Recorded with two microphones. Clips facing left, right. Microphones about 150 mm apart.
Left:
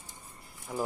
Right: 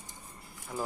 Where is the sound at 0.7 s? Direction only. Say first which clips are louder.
Left 3 dB; 15° left (ahead or behind).